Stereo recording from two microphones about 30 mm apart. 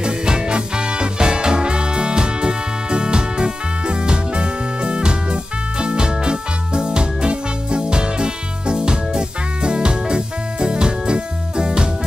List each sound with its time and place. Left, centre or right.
0.0 s music: right